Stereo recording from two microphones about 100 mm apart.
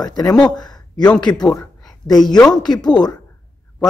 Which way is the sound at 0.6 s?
45° left (ahead or behind).